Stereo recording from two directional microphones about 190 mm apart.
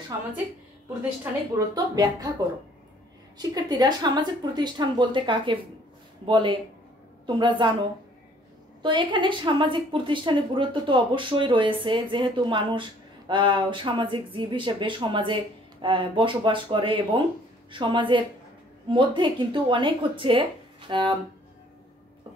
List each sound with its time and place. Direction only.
1.6 s a woman's voice: 15° right (ahead or behind)
3.3 s a woman's voice: 20° right (ahead or behind)
8.8 s a woman's voice: 25° right (ahead or behind)